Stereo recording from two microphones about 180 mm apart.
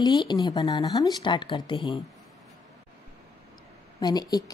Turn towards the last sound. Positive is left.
turn(degrees=20)  # may be behind; listen again after turning